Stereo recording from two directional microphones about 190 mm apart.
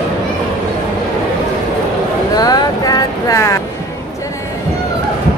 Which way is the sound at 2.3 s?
20° left (ahead or behind).